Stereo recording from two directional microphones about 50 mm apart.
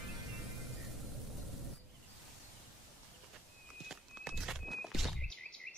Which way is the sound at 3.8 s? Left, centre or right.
Centre.